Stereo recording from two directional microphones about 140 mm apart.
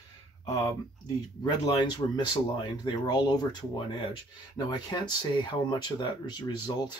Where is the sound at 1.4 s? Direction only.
30° left (ahead or behind).